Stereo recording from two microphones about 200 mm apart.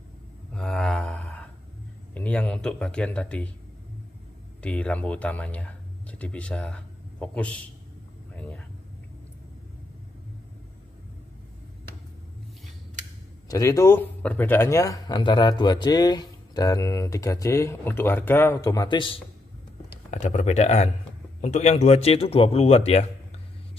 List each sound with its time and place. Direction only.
0.5 s a sound: 5° left (ahead or behind)
2.1 s speech: 5° left (ahead or behind)
4.6 s speech: 5° left (ahead or behind)
8.4 s a sound: 5° left (ahead or behind)
13.5 s speech: 15° left (ahead or behind)
20.1 s speech: 35° left (ahead or behind)